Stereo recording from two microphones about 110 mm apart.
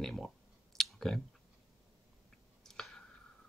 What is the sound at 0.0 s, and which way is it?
Speech, 5° left (ahead or behind).